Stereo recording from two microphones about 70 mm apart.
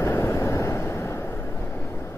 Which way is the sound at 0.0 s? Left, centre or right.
Left.